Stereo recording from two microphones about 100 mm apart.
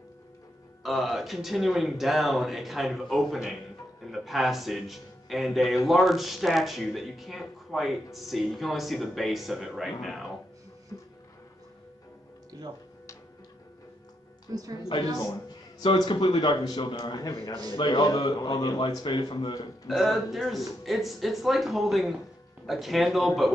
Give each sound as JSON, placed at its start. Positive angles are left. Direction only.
{"t": 0.8, "sound": "speech", "side_deg": 0}
{"t": 10.9, "sound": "music", "side_deg": 30}
{"t": 14.5, "sound": "a woman's voice", "side_deg": -40}
{"t": 16.1, "sound": "a man's voice", "side_deg": 50}
{"t": 18.3, "sound": "a man's voice", "side_deg": 40}
{"t": 19.9, "sound": "speech", "side_deg": 0}